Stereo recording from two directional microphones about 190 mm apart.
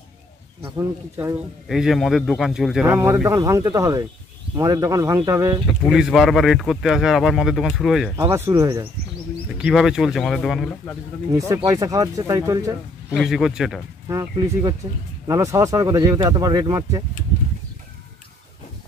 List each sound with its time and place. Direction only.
0.7 s speech: 15° right (ahead or behind)
1.7 s speech: centre (ahead or behind)
2.9 s speech: 15° right (ahead or behind)
5.9 s speech: centre (ahead or behind)
8.2 s speech: 15° right (ahead or behind)
9.6 s speech: 5° right (ahead or behind)
11.3 s speech: 15° right (ahead or behind)
13.1 s speech: centre (ahead or behind)
14.0 s speech: 20° right (ahead or behind)